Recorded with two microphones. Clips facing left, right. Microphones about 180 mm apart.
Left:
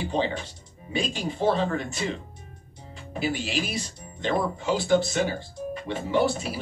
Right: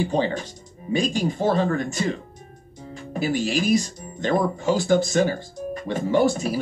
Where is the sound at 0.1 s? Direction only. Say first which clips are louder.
Right 4 dB; 45° right (ahead or behind).